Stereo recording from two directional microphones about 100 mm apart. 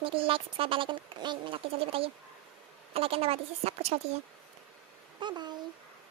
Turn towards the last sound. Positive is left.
turn(degrees=-45)  # may be behind; listen again after turning